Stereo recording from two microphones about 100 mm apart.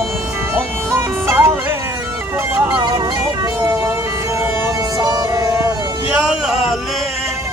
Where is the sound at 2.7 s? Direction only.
55° right (ahead or behind).